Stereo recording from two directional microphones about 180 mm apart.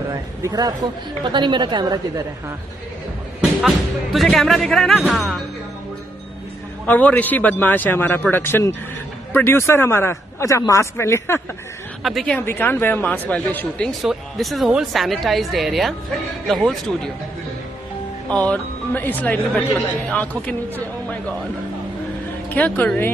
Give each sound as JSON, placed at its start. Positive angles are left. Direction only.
{"t": 0.1, "sound": "a woman's voice", "side_deg": -20}
{"t": 3.6, "sound": "speech", "side_deg": 0}
{"t": 6.9, "sound": "speech", "side_deg": 10}
{"t": 12.0, "sound": "speech", "side_deg": 0}
{"t": 12.4, "sound": "speech", "side_deg": 10}
{"t": 18.3, "sound": "speech", "side_deg": 5}
{"t": 22.5, "sound": "speech", "side_deg": 10}